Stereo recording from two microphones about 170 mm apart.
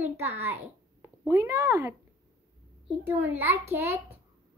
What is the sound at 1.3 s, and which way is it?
Speech, 20° right (ahead or behind).